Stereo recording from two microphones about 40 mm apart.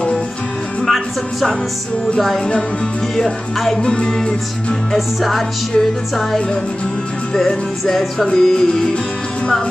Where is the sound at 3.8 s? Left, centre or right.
Left.